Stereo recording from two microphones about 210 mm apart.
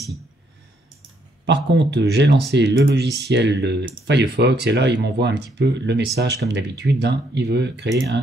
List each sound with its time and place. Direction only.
1.4 s speech: 55° right (ahead or behind)